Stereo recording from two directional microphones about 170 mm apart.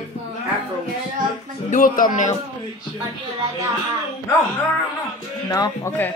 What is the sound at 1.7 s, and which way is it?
Speech, 50° left (ahead or behind).